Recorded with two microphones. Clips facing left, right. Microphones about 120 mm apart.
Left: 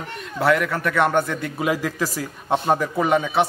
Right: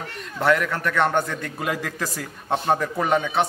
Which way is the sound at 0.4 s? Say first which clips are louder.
Left 1 dB; 5° left (ahead or behind).